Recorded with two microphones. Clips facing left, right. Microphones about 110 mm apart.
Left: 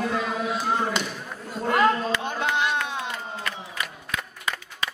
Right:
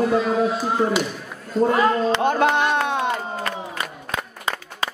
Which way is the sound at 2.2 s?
60° right (ahead or behind).